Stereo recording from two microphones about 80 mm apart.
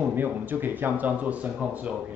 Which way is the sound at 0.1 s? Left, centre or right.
Right.